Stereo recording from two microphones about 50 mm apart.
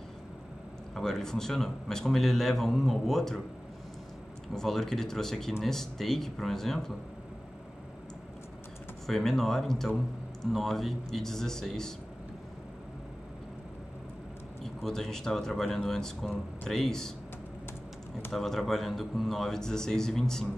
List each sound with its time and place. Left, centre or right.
0.9 s a man's voice: centre
4.6 s speech: centre
9.0 s a man's voice: centre
14.6 s speech: centre
18.3 s a man's voice: centre